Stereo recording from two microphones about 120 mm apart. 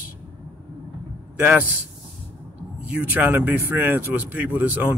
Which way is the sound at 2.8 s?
15° right (ahead or behind).